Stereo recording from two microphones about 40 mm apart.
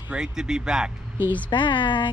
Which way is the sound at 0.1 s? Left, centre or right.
Centre.